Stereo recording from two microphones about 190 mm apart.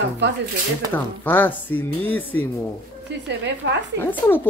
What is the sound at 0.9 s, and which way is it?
Speech, 10° left (ahead or behind).